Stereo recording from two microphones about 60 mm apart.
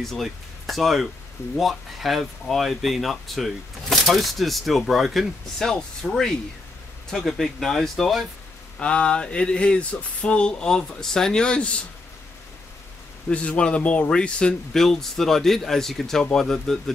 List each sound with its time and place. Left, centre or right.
0.0 s speech: centre
5.7 s speech: centre
8.7 s speech: centre
13.3 s speech: left; by 16.9 s centre